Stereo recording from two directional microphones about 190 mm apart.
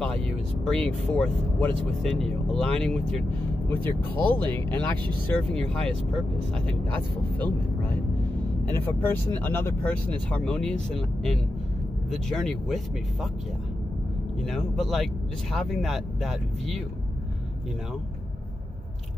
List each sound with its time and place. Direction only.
0.0 s speech: 5° left (ahead or behind)
4.4 s speech: 25° right (ahead or behind)
4.6 s speech: 10° left (ahead or behind)
14.4 s speech: centre (ahead or behind)